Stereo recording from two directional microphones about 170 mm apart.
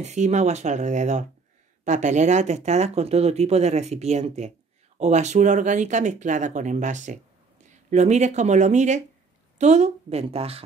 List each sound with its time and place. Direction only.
0.0 s speech: 45° right (ahead or behind)